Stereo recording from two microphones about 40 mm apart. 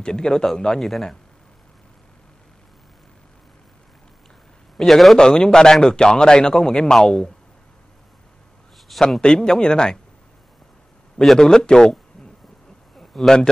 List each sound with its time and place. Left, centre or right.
0.0 s a man's voice: centre
4.7 s a man's voice: centre
5.1 s a man's voice: centre
8.9 s a man's voice: centre
9.2 s a man's voice: left
11.3 s a man's voice: centre
12.9 s a sound: centre